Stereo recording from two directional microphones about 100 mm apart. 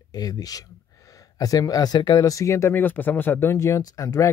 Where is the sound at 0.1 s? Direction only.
40° left (ahead or behind).